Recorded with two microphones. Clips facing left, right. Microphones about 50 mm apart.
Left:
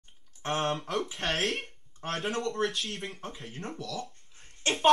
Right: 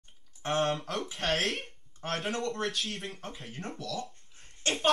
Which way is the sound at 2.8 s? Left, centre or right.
Centre.